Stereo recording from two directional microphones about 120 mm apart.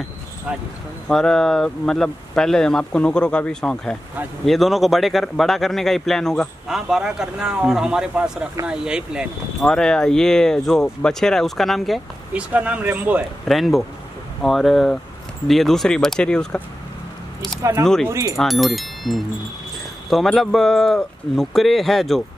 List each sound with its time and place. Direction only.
0.5 s speech: 10° right (ahead or behind)
1.0 s speech: 5° left (ahead or behind)
9.7 s speech: 5° left (ahead or behind)
12.3 s speech: 10° right (ahead or behind)
13.5 s speech: centre (ahead or behind)
17.6 s speech: 25° right (ahead or behind)
18.4 s speech: centre (ahead or behind)